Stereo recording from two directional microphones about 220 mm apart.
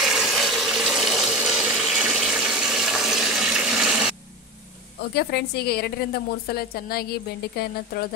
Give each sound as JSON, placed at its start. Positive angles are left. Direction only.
{"t": 0.0, "sound": "water", "side_deg": 0}
{"t": 5.1, "sound": "a woman's voice", "side_deg": 45}